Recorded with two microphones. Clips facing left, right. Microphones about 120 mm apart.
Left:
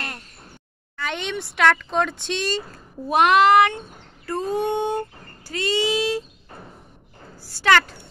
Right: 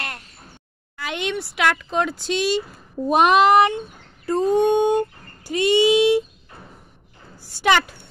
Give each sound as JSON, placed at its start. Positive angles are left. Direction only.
{"t": 0.9, "sound": "speech", "side_deg": -5}
{"t": 7.4, "sound": "speech", "side_deg": -15}